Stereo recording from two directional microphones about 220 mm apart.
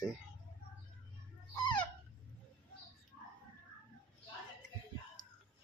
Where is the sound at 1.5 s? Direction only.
20° left (ahead or behind).